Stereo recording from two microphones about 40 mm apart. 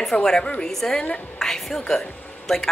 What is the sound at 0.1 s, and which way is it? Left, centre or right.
Speech, centre.